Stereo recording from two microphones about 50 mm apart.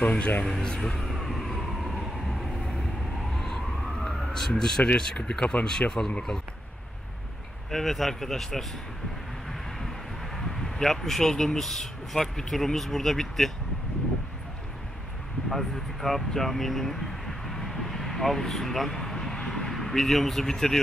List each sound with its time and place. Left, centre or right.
0.0 s speech: left
0.5 s vehicle: centre
4.0 s emergency vehicle: centre
5.4 s speech: left
5.7 s speech: centre
7.7 s speech: centre
10.3 s speech: centre
15.5 s speech: centre